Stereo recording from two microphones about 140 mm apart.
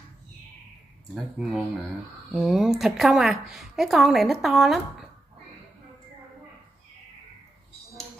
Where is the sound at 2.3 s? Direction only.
Centre (ahead or behind).